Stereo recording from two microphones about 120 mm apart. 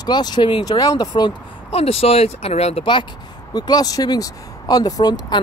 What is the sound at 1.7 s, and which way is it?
Speech, 55° left (ahead or behind).